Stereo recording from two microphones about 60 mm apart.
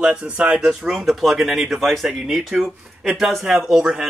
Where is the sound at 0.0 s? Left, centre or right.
Centre.